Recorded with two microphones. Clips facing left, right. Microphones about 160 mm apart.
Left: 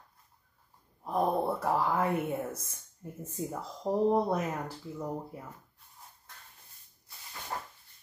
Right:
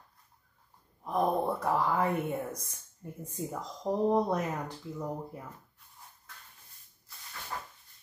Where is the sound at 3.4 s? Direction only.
5° left (ahead or behind).